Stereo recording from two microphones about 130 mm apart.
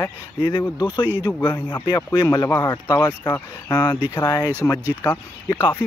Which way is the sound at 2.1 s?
35° left (ahead or behind).